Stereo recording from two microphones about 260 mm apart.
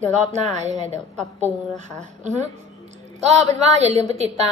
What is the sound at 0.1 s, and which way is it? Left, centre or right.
Speech, right.